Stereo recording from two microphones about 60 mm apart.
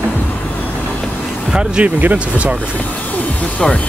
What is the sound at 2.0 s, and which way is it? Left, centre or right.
Speech, right.